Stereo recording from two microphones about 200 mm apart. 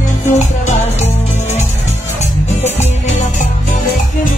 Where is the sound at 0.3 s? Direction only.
35° left (ahead or behind).